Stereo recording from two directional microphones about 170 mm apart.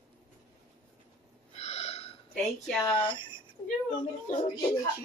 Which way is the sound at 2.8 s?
30° left (ahead or behind).